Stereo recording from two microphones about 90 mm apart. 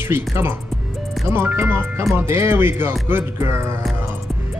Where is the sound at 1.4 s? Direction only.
25° right (ahead or behind).